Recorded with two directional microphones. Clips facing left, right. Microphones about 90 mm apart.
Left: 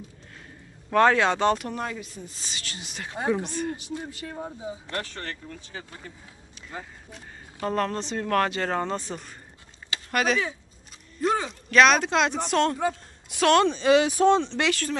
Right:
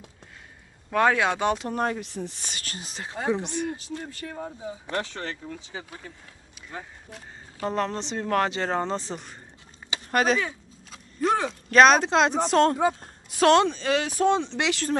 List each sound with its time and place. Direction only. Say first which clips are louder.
0.9 s speech: left 2 dB; 5° right (ahead or behind)
1.7 s speech: right 5 dB; 45° right (ahead or behind)
2.0 s a woman's voice: right 5 dB; 70° right (ahead or behind)
2.5 s speech: even; 45° right (ahead or behind)
3.4 s speech: right 1 dB; 15° right (ahead or behind)
4.0 s speech: even; 15° left (ahead or behind)
4.8 s speech: right 6 dB; 15° right (ahead or behind)
7.6 s speech: left 1 dB; 20° right (ahead or behind)
10.1 s speech: right 2 dB; 35° right (ahead or behind)
11.2 s speech: right 1 dB; centre (ahead or behind)
11.7 s a woman's voice: right 2 dB; 35° right (ahead or behind)
13.7 s speech: left 6 dB; 5° left (ahead or behind)
14.2 s speech: left 2 dB; 15° right (ahead or behind)